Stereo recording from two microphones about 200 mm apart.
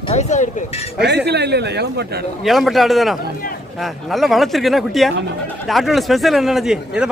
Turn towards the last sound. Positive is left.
turn(degrees=0)  # may be behind; listen again after turning